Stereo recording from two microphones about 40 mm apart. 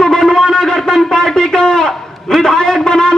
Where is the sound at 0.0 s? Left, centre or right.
Centre.